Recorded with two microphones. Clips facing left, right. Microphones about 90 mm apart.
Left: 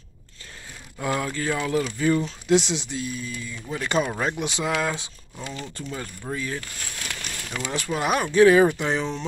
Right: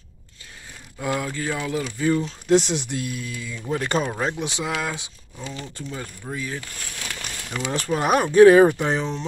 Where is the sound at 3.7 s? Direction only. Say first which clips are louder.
Even; 40° right (ahead or behind).